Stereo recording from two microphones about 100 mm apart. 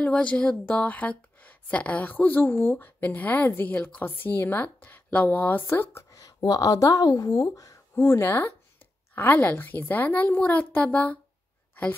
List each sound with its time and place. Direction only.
0.0 s speech: 10° left (ahead or behind)